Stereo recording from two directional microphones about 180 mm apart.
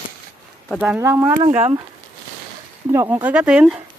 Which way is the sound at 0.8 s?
10° right (ahead or behind).